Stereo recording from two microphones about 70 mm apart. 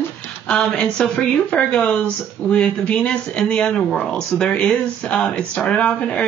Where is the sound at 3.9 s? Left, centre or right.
Centre.